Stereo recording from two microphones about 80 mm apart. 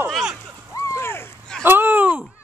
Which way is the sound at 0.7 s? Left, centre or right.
Left.